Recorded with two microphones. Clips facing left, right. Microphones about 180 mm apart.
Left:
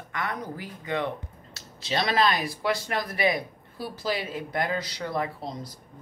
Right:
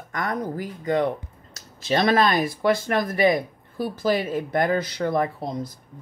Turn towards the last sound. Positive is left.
turn(degrees=-50)  # may be behind; listen again after turning